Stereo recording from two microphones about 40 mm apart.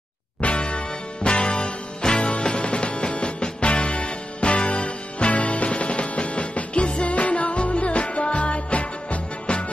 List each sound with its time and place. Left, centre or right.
0.4 s music: left